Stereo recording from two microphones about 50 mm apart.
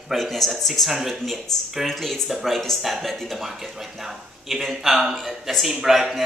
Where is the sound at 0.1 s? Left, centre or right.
Centre.